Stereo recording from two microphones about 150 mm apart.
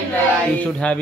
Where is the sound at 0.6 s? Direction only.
10° left (ahead or behind).